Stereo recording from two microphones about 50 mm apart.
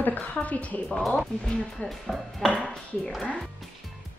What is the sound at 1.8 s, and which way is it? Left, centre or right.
Speech, centre.